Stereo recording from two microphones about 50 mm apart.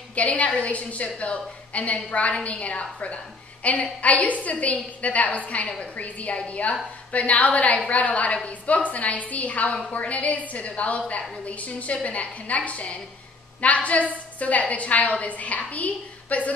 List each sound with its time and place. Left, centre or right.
0.1 s a woman's voice: left